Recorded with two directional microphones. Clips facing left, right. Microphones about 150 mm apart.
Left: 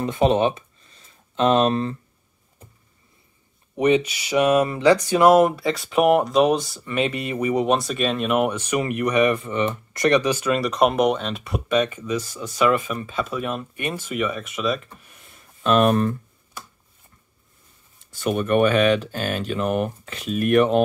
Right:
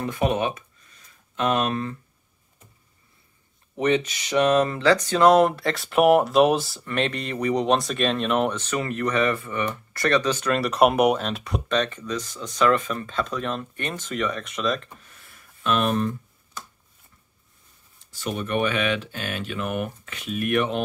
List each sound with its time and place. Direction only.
0.0 s speech: 25° left (ahead or behind)
3.7 s speech: 10° left (ahead or behind)
15.0 s a sound: 15° left (ahead or behind)
15.6 s speech: 45° left (ahead or behind)
18.1 s speech: 55° left (ahead or behind)